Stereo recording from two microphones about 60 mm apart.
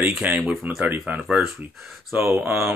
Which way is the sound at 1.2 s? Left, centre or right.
Centre.